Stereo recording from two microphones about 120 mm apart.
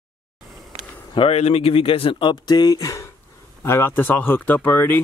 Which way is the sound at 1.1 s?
55° left (ahead or behind).